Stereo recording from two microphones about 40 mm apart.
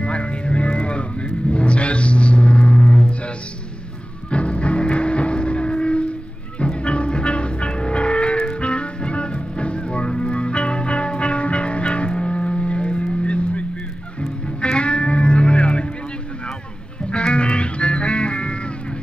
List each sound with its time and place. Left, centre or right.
0.0 s vehicle: left
4.3 s music: left
17.1 s music: left